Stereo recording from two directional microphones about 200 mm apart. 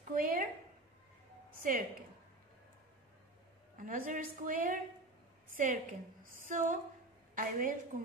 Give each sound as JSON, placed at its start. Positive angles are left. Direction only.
{"t": 0.1, "sound": "a sound", "side_deg": -45}
{"t": 1.6, "sound": "a woman's voice", "side_deg": -40}
{"t": 3.7, "sound": "a woman's voice", "side_deg": -45}